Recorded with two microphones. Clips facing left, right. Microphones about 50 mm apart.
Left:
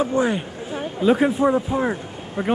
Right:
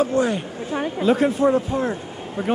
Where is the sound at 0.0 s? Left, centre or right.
Centre.